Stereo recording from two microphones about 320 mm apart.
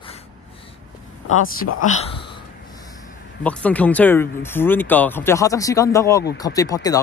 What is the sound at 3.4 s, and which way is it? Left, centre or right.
Speech, centre.